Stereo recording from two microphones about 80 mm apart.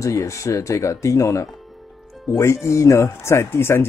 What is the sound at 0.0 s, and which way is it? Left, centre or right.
Speech, left.